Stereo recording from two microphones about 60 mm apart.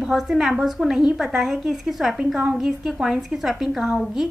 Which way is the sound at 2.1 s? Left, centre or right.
Centre.